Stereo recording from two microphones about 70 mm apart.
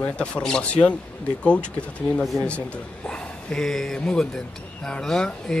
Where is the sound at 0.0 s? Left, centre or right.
Centre.